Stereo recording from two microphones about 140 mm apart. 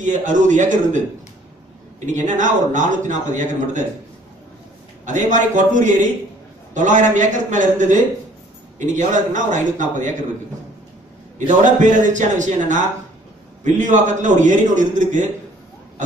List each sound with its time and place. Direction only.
0.0 s a man's voice: 65° right (ahead or behind)
5.0 s a man's voice: 60° right (ahead or behind)
11.3 s a man's voice: 60° right (ahead or behind)